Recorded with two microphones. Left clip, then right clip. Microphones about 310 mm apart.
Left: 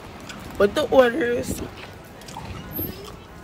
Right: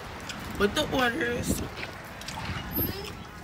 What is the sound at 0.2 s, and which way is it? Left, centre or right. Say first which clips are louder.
Speech: left 7 dB; centre.